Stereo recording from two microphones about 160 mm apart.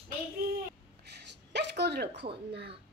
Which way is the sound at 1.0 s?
90° right.